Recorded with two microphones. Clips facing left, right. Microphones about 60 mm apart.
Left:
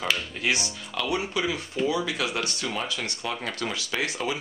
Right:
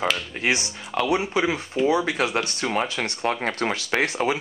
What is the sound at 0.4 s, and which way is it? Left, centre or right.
Speech, right.